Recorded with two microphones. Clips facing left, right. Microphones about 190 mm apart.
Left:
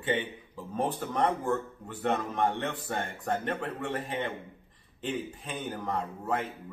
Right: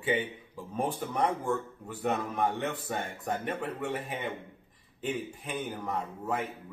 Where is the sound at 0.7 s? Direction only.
10° right (ahead or behind).